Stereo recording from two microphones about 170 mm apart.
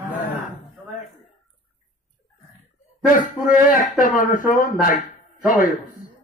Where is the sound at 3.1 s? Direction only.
50° left (ahead or behind).